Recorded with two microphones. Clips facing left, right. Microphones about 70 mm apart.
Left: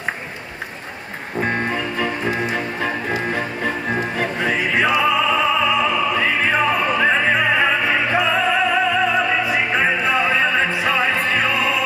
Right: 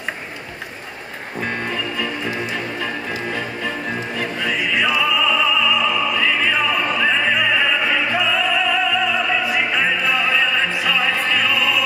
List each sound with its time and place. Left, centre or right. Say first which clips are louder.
1.4 s music: left 3 dB; left